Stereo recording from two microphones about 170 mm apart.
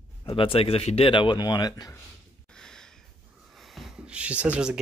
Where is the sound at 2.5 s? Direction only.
5° left (ahead or behind).